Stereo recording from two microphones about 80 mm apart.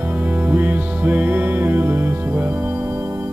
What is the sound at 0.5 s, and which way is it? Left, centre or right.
Music, right.